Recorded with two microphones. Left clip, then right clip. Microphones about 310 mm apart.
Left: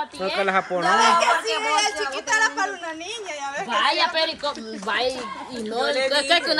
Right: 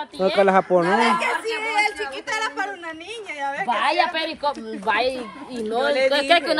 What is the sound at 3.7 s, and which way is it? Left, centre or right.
Speech, centre.